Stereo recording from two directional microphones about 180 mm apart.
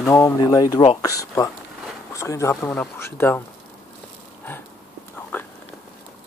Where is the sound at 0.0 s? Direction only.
15° left (ahead or behind).